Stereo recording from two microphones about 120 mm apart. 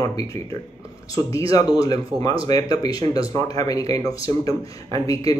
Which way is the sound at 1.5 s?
30° left (ahead or behind).